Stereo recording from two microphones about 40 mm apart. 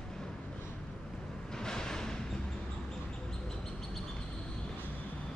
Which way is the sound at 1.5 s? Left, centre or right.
Centre.